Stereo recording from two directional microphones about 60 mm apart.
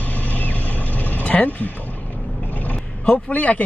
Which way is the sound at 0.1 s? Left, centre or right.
Left.